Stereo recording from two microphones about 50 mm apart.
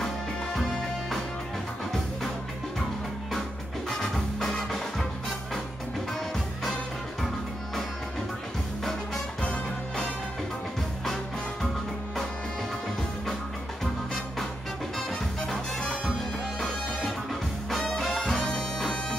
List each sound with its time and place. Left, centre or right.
0.0 s music: centre
4.0 s music: centre
15.0 s music: centre
18.6 s bagpipes: centre